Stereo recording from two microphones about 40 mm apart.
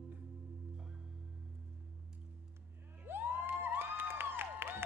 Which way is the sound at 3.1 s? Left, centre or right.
Right.